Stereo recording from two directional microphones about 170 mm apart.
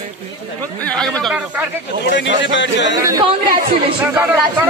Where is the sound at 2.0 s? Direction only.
90° left.